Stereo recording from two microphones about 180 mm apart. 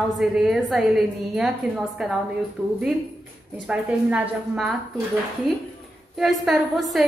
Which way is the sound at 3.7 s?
5° right (ahead or behind).